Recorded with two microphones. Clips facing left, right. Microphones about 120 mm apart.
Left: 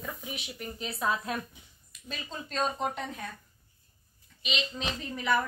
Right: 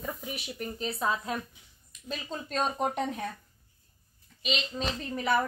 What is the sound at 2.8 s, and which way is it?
Speech, 25° right (ahead or behind).